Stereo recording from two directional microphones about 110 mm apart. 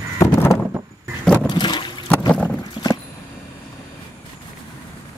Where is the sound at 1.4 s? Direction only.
40° left (ahead or behind).